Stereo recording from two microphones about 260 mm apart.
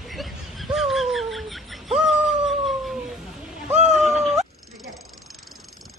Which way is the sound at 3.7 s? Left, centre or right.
Right.